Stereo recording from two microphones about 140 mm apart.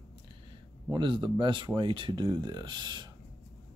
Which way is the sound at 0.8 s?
35° right (ahead or behind).